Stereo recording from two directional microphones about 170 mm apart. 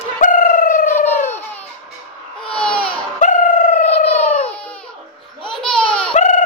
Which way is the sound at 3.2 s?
50° left (ahead or behind).